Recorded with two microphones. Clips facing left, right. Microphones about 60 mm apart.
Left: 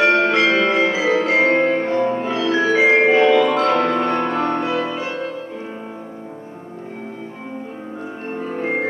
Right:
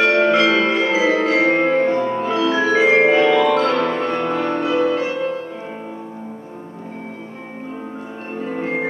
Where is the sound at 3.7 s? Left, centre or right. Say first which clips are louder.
Left 1 dB; left.